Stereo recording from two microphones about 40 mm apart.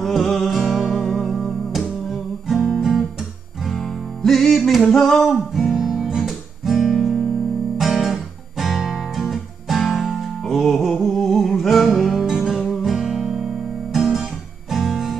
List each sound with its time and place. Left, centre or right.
0.0 s music: centre
0.6 s music: centre
2.4 s music: centre
2.8 s guitar: centre
3.7 s music: centre
4.8 s a sound: centre
5.2 s music: centre
5.8 s guitar: centre
8.1 s music: centre
10.4 s music: centre
11.1 s a sound: centre
11.6 s music: centre
12.3 s music: centre
13.9 s guitar: centre